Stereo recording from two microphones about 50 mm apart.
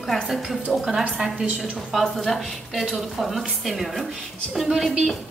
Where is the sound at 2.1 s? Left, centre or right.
Centre.